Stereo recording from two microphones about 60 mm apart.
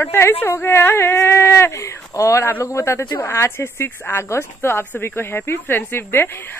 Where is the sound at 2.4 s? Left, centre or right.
Left.